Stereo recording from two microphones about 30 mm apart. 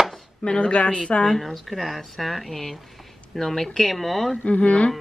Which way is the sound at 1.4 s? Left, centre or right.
Centre.